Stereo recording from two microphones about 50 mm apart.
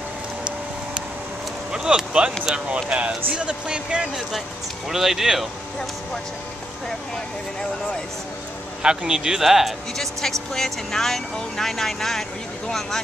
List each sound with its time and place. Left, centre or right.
1.7 s speech: centre
4.8 s speech: centre
8.8 s speech: centre
10.5 s speech: centre